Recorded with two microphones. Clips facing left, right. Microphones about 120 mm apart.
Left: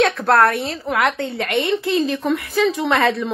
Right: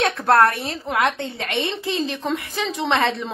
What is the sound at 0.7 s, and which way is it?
A woman's voice, 25° right (ahead or behind).